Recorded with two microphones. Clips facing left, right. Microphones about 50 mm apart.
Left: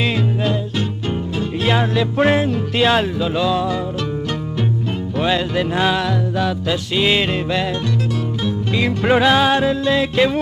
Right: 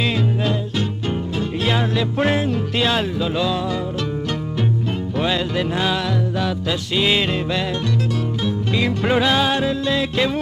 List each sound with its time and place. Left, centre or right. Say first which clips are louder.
0.0 s music: left 1 dB; centre
5.2 s music: left 3 dB; centre